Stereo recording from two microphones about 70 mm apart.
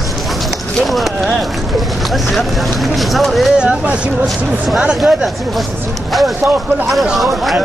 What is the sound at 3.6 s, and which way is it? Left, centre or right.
Speech, centre.